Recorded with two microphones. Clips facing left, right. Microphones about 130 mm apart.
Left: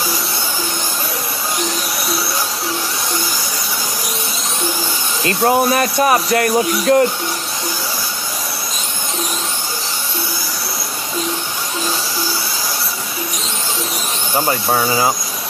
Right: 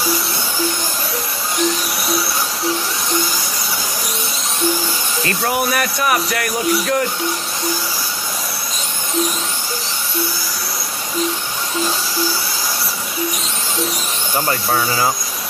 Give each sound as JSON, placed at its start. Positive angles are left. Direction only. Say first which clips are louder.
{"t": 5.4, "sound": "speech", "louder": "left 6 dB", "side_deg": 30}
{"t": 14.4, "sound": "speech", "louder": "left 2 dB", "side_deg": 15}